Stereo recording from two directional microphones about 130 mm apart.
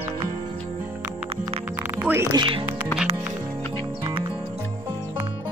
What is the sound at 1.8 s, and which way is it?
Music, 15° right (ahead or behind).